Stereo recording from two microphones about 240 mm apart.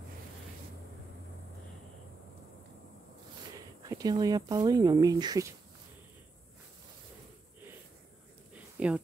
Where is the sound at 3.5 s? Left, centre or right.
Centre.